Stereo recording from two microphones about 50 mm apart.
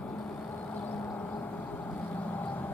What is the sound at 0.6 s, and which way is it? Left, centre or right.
Vehicle, left.